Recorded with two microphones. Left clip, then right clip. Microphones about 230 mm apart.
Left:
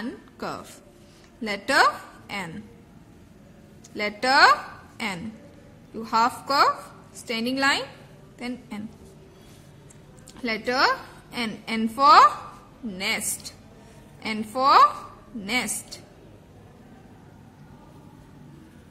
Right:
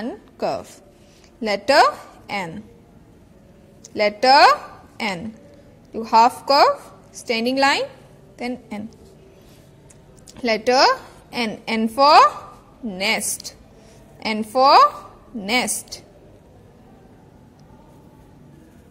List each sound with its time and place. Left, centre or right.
0.0 s a woman's voice: centre
3.9 s a woman's voice: centre
10.4 s a woman's voice: centre